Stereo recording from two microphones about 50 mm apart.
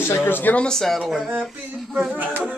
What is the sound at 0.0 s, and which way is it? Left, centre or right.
Speech, left.